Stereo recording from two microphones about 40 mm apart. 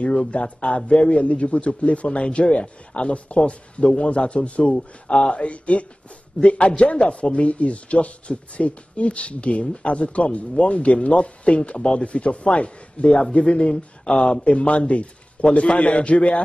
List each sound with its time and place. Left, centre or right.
0.1 s a man's voice: left
4.7 s a man's voice: left